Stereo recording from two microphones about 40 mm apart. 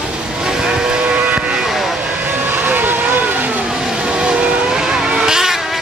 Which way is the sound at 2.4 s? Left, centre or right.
Right.